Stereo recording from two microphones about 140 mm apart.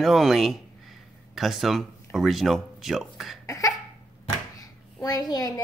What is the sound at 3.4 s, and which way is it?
Cough, 25° left (ahead or behind).